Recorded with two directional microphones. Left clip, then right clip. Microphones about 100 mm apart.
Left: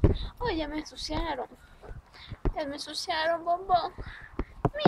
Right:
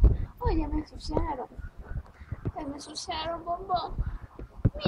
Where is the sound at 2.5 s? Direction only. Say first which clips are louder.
Left 3 dB; 10° left (ahead or behind).